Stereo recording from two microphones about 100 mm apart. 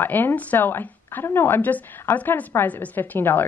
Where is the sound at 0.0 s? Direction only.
20° left (ahead or behind).